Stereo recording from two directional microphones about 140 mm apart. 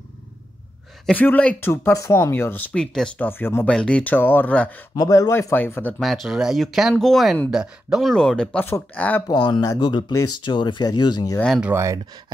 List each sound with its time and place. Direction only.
1.0 s speech: 10° left (ahead or behind)
3.3 s speech: 15° left (ahead or behind)
4.9 s speech: 25° left (ahead or behind)
5.9 s speech: centre (ahead or behind)
9.3 s speech: 30° left (ahead or behind)
11.3 s speech: 5° left (ahead or behind)
11.6 s speech: 20° right (ahead or behind)